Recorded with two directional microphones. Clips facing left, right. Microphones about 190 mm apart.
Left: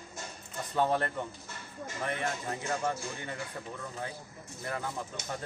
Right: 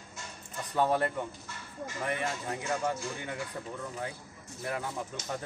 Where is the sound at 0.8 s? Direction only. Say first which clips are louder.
Right 1 dB; 10° right (ahead or behind).